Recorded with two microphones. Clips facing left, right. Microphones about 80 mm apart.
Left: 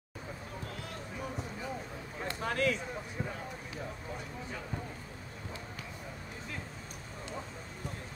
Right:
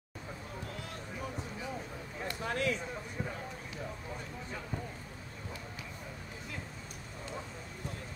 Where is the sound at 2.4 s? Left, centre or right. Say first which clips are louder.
Left 3 dB; left.